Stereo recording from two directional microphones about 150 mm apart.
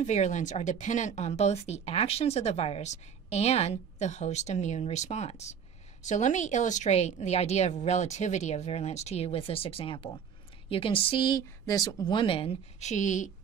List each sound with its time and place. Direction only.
0.0 s speech: 50° left (ahead or behind)